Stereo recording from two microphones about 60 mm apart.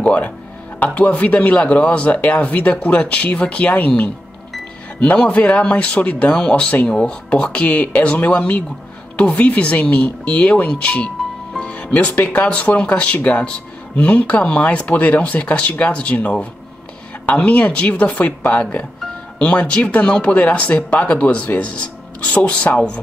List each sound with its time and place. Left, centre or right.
0.0 s a woman's voice: left
11.5 s music: centre
11.9 s speech: left
17.5 s speech: left